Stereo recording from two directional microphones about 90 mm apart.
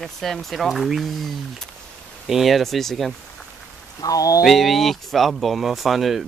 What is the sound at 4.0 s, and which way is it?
Rain on surface, 40° left (ahead or behind).